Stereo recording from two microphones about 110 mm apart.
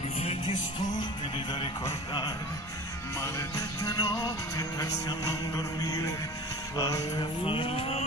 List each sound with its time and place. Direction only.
1.9 s music: 35° left (ahead or behind)
7.2 s music: 50° left (ahead or behind)